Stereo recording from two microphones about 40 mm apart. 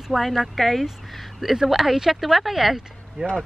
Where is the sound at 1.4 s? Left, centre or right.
Centre.